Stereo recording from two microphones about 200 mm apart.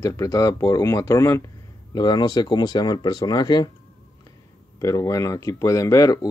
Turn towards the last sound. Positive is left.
turn(degrees=15)  # may be behind; listen again after turning